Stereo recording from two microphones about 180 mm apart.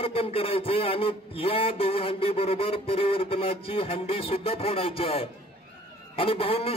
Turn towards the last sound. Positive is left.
turn(degrees=30)  # may be behind; listen again after turning